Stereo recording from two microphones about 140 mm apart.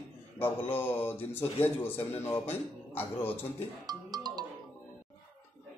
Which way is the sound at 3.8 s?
30° right (ahead or behind).